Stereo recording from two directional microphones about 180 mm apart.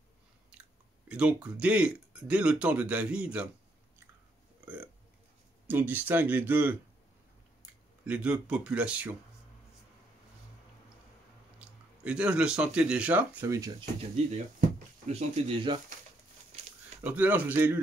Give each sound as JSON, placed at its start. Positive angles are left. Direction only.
{"t": 0.5, "sound": "speech", "side_deg": -5}
{"t": 5.7, "sound": "speech", "side_deg": -10}
{"t": 8.0, "sound": "speech", "side_deg": -5}
{"t": 12.0, "sound": "speech", "side_deg": -5}
{"t": 15.0, "sound": "speech", "side_deg": -35}
{"t": 17.0, "sound": "speech", "side_deg": -10}